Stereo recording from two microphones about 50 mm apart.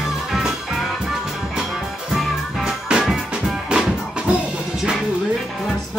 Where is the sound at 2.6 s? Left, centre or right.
Centre.